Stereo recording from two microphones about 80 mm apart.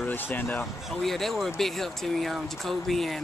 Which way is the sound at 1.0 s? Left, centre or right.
Centre.